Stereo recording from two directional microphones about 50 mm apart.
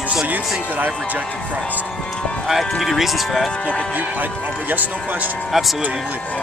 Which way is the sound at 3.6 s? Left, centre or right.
Centre.